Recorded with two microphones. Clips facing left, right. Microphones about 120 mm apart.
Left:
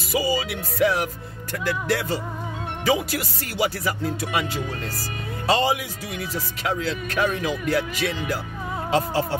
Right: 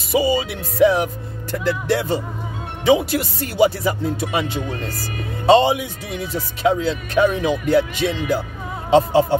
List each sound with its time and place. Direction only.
0.1 s speech: 25° right (ahead or behind)